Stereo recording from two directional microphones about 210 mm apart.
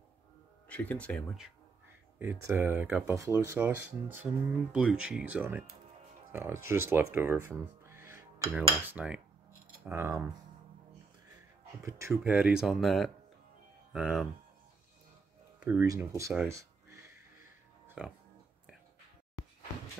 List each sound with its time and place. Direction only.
0.7 s speech: 5° left (ahead or behind)
2.1 s speech: 15° right (ahead or behind)
7.8 s cutlery: 10° right (ahead or behind)
8.8 s speech: 5° right (ahead or behind)
11.8 s speech: 10° right (ahead or behind)
15.6 s speech: 10° right (ahead or behind)
17.8 s music: 5° right (ahead or behind)